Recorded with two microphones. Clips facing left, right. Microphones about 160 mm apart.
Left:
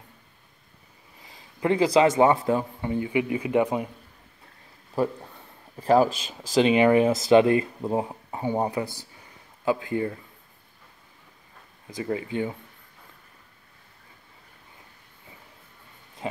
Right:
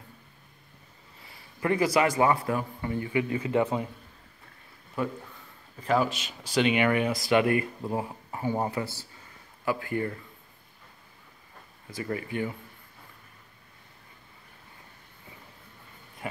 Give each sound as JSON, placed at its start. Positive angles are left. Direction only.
{"t": 1.2, "sound": "a sound", "side_deg": 20}
{"t": 2.0, "sound": "speech", "side_deg": 25}
{"t": 5.0, "sound": "a man's voice", "side_deg": 35}
{"t": 11.9, "sound": "speech", "side_deg": 20}